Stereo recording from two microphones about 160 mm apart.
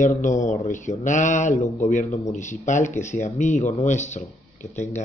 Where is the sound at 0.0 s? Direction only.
50° left (ahead or behind).